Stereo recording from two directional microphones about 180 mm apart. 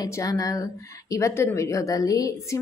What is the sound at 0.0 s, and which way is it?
A woman's voice, 20° left (ahead or behind).